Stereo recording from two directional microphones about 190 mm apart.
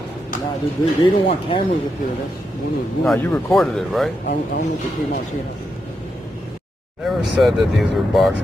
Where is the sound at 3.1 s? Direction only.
5° left (ahead or behind).